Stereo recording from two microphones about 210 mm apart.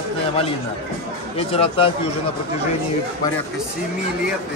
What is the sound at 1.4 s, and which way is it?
Speech, 30° left (ahead or behind).